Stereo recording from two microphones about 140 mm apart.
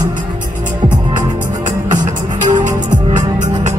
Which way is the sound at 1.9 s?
70° right (ahead or behind).